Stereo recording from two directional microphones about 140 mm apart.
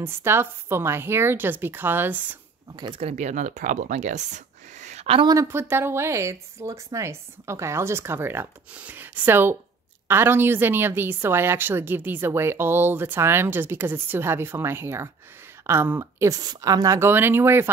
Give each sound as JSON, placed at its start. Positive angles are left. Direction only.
{"t": 0.0, "sound": "a woman's voice", "side_deg": -15}
{"t": 2.7, "sound": "speech", "side_deg": -30}
{"t": 3.0, "sound": "speech", "side_deg": -55}
{"t": 5.2, "sound": "a woman's voice", "side_deg": -25}